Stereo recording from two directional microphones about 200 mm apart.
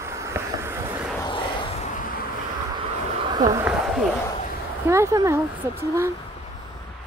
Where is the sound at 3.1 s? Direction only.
20° right (ahead or behind).